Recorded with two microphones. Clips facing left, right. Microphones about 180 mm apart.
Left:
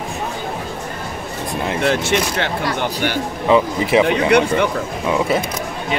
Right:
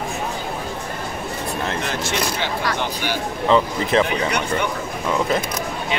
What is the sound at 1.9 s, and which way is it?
Speech, 75° left (ahead or behind).